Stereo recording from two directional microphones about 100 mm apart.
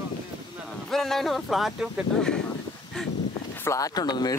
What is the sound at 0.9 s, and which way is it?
Speech, 5° left (ahead or behind).